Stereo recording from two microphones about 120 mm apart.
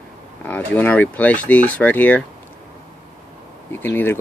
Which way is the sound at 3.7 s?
15° left (ahead or behind).